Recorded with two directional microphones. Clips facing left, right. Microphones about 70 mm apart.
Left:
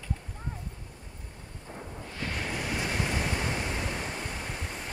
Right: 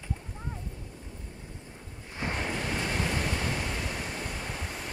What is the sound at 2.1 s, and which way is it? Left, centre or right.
Waves, right.